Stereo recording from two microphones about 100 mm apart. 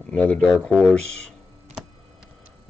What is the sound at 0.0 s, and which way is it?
Speech, 15° left (ahead or behind).